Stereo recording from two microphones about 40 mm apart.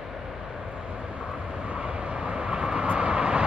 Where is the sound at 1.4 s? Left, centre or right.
Right.